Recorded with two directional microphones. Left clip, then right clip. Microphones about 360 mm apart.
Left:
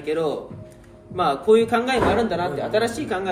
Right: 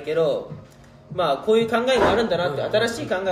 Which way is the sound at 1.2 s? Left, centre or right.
Centre.